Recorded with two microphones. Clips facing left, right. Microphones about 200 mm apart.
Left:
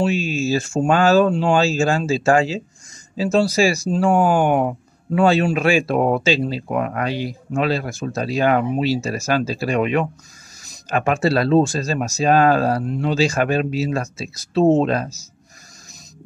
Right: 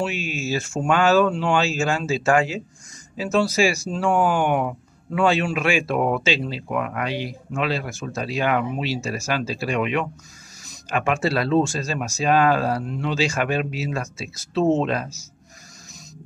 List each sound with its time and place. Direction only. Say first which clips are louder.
0.0 s speech: left 6 dB; 30° left (ahead or behind)